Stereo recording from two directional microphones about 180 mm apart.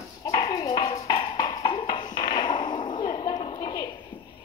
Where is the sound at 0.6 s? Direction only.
25° left (ahead or behind).